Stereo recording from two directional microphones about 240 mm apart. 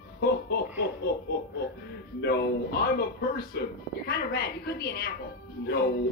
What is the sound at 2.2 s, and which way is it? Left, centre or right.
Speech, left.